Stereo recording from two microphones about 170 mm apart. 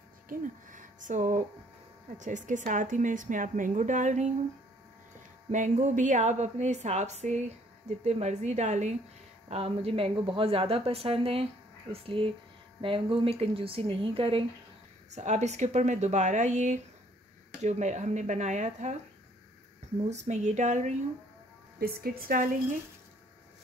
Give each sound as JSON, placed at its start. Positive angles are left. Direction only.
{"t": 0.3, "sound": "a woman's voice", "side_deg": -50}
{"t": 5.5, "sound": "a woman's voice", "side_deg": -45}
{"t": 15.0, "sound": "a woman's voice", "side_deg": -45}
{"t": 20.1, "sound": "a woman's voice", "side_deg": -45}
{"t": 21.7, "sound": "speech", "side_deg": -60}